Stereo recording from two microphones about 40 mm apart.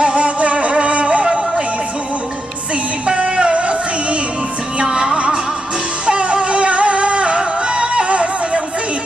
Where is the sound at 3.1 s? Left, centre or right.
Right.